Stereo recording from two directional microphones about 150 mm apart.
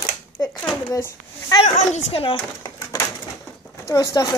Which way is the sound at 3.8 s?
25° left (ahead or behind).